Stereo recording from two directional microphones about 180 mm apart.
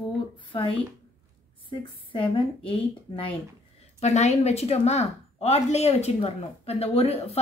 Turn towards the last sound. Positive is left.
turn(degrees=35)  # may be behind; listen again after turning